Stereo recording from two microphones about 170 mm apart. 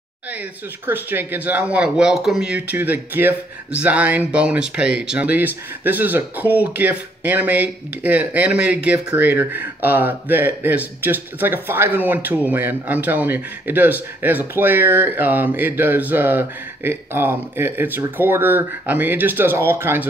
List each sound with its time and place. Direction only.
0.3 s speech: 10° right (ahead or behind)